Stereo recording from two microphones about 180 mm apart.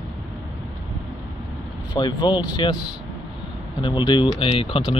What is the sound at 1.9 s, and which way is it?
Speech, 25° left (ahead or behind).